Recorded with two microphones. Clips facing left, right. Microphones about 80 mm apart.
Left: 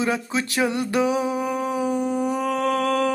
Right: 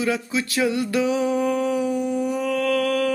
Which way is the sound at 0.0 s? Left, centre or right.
Left.